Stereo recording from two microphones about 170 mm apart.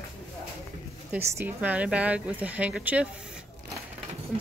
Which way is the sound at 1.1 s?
10° right (ahead or behind).